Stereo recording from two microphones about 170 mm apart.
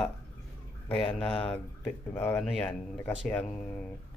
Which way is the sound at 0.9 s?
30° left (ahead or behind).